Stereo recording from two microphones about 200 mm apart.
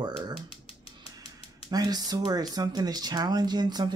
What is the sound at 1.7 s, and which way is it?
Speech, 20° right (ahead or behind).